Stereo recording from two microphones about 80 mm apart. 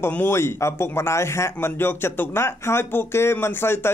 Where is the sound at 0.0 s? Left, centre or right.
Left.